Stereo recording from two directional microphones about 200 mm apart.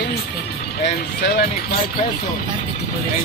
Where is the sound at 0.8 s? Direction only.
60° left (ahead or behind).